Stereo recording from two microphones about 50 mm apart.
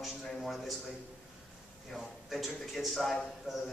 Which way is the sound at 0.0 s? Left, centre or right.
Centre.